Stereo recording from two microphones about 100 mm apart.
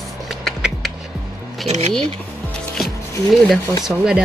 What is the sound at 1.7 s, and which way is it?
Speech, 90° right.